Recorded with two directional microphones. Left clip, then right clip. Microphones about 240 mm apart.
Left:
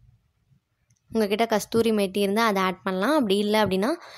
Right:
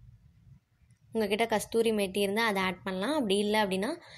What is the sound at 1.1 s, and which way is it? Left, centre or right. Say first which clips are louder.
A woman's voice: left 5 dB; left.